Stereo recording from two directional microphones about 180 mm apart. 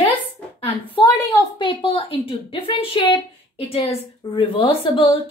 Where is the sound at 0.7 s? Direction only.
30° left (ahead or behind).